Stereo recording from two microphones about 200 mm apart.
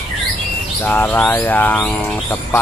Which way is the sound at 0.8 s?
10° left (ahead or behind).